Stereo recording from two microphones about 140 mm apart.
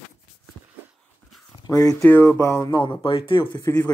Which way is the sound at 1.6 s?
25° left (ahead or behind).